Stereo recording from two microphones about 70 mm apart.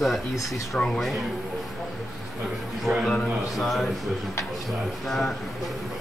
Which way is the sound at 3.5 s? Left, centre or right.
Centre.